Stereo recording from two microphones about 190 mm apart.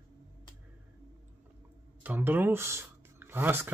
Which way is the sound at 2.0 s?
10° right (ahead or behind).